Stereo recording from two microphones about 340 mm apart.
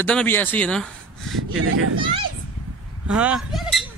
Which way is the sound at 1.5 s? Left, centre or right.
Right.